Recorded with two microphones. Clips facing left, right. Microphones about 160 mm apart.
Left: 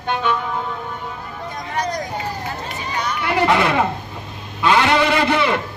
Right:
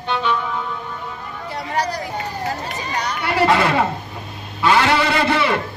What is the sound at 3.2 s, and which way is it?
Speech, 20° left (ahead or behind).